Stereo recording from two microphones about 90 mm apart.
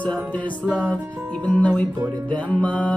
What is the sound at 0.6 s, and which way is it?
Music, 20° right (ahead or behind).